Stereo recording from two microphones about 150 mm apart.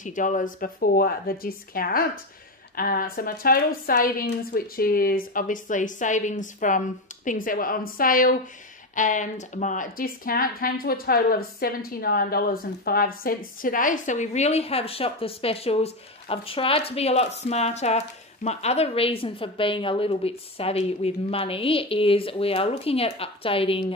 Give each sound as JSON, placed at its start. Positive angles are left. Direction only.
{"t": 0.0, "sound": "speech", "side_deg": 60}